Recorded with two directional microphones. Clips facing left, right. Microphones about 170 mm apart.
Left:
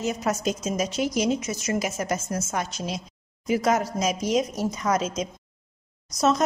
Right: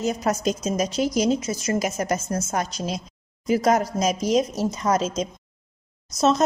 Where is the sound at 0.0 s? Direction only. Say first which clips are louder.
Right 3 dB; 35° right (ahead or behind).